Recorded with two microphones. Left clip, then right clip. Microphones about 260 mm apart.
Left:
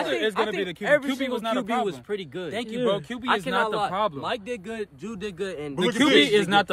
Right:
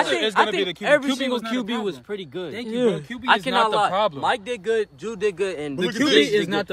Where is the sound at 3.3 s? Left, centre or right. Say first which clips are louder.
Right 5 dB; right.